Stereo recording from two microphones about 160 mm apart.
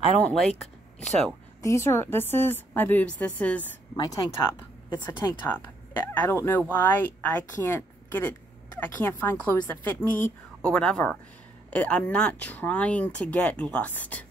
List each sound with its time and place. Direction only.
0.2 s speech: 5° left (ahead or behind)
1.6 s speech: 15° left (ahead or behind)
3.9 s speech: 25° left (ahead or behind)
5.5 s speech: 15° left (ahead or behind)